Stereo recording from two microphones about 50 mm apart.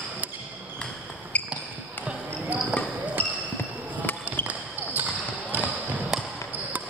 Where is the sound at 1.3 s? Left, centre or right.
Left.